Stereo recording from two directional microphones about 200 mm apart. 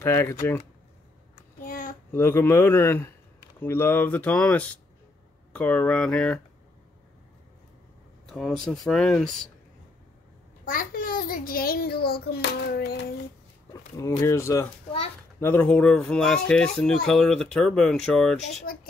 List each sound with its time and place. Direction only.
0.0 s speech: 15° left (ahead or behind)
1.6 s a sound: 45° left (ahead or behind)
2.1 s speech: 10° left (ahead or behind)
8.3 s speech: centre (ahead or behind)
10.6 s a child's voice: 45° left (ahead or behind)
13.9 s speech: 15° left (ahead or behind)